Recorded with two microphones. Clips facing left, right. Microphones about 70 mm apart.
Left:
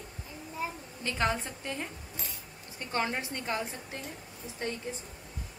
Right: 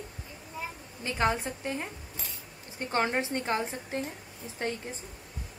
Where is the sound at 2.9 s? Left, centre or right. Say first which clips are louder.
Right 4 dB; right.